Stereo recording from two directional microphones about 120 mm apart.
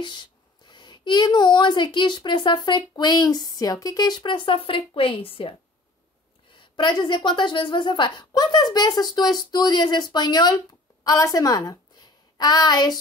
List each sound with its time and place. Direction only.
0.0 s speech: 40° left (ahead or behind)
6.5 s speech: 40° left (ahead or behind)